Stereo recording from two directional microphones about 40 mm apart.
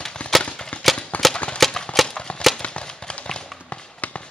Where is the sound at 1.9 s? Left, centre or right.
Centre.